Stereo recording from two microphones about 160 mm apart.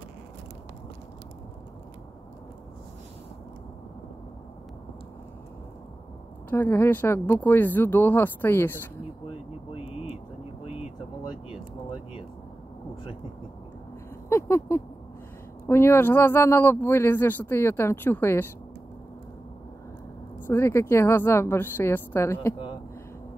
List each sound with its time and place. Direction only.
6.5 s a man's voice: 15° left (ahead or behind)
14.3 s a sound: 15° left (ahead or behind)
15.6 s a man's voice: 15° left (ahead or behind)
20.4 s a man's voice: 15° left (ahead or behind)